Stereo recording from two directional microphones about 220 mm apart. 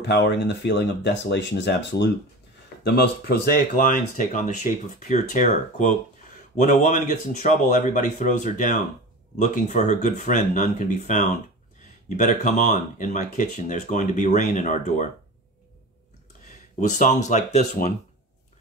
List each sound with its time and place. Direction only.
0.0 s speech: 50° left (ahead or behind); by 15.0 s 35° left (ahead or behind)
17.0 s speech: 30° left (ahead or behind)